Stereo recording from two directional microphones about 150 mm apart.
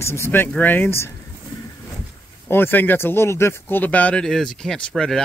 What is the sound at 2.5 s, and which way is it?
Speech, 15° left (ahead or behind).